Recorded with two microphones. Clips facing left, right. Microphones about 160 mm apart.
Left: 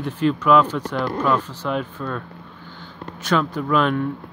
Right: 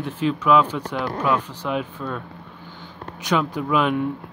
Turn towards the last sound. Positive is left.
turn(degrees=-10)  # may be behind; listen again after turning